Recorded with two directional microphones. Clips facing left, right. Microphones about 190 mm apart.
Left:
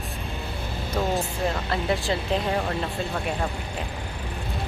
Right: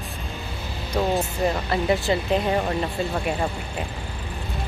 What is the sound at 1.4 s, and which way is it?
Speech, centre (ahead or behind).